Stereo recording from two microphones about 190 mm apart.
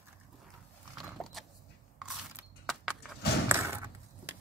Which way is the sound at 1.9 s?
Centre (ahead or behind).